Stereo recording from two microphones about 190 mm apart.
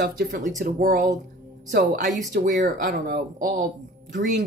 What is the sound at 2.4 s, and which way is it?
Speech, 40° right (ahead or behind).